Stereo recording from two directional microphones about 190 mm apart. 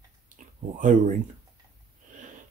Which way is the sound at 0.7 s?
40° right (ahead or behind).